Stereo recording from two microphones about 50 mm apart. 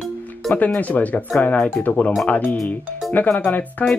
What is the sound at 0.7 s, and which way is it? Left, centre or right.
Speech, left.